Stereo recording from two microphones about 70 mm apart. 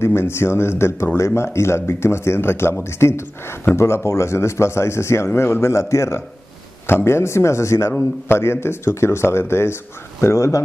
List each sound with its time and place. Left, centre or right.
0.0 s speech: left